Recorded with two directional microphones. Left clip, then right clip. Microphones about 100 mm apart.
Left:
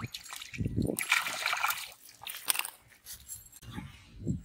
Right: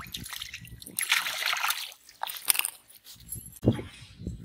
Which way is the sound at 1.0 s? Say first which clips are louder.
Right 4 dB; 5° left (ahead or behind).